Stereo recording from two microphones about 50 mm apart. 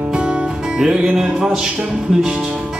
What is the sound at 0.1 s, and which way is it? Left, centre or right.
Music, centre.